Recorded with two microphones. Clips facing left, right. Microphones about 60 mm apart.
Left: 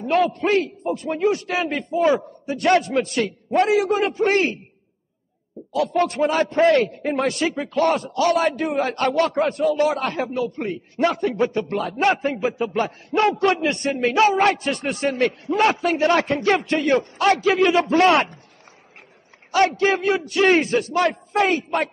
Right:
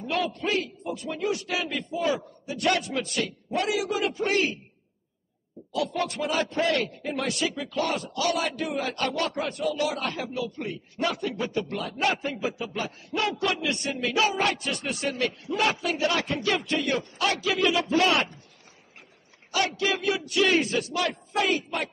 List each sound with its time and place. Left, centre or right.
0.0 s a man's voice: left
5.8 s a man's voice: left
19.5 s a man's voice: left